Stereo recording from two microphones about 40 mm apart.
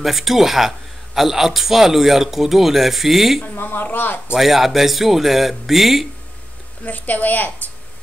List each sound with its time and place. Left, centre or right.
0.0 s a man's voice: centre
3.5 s speech: left
4.4 s a man's voice: centre
6.8 s a woman's voice: left